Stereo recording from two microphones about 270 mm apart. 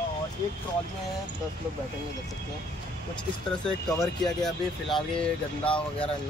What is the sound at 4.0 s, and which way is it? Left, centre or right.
Speech, centre.